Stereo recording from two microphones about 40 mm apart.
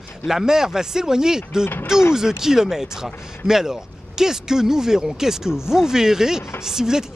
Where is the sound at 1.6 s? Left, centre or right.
Left.